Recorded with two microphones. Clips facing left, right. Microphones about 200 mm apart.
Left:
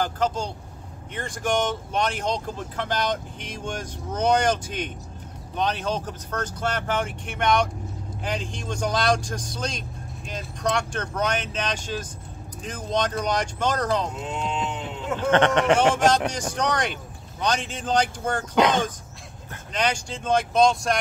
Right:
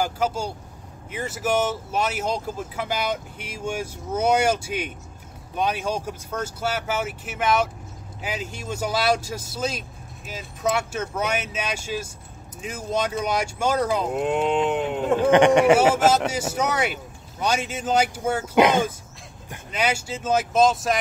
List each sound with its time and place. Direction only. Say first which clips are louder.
0.0 s speech: right 1 dB; 10° right (ahead or behind)
14.1 s speech: right 8 dB; 60° right (ahead or behind)
15.1 s speech: right 4 dB; 10° right (ahead or behind)